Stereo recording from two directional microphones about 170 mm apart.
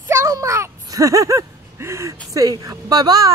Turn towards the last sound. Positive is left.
turn(degrees=-20)  # may be behind; listen again after turning